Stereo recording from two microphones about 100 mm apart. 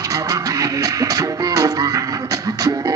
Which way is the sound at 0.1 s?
35° right (ahead or behind).